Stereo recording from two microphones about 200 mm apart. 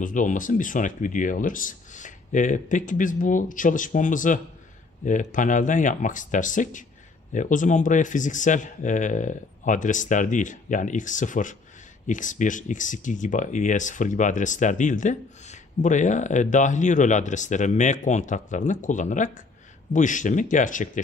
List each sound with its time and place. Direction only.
0.0 s speech: 40° left (ahead or behind)